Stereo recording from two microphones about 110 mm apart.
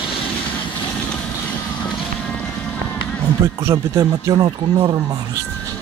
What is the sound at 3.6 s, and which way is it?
Speech, 30° right (ahead or behind).